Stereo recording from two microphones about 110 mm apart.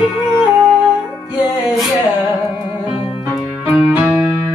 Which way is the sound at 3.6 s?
10° right (ahead or behind).